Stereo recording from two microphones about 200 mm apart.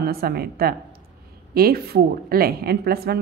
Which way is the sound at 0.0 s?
50° right (ahead or behind).